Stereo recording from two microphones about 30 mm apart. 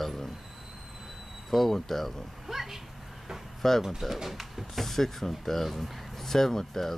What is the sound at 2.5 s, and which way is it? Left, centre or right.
Speech, centre.